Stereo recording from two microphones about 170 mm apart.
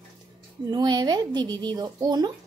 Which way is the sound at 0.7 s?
25° right (ahead or behind).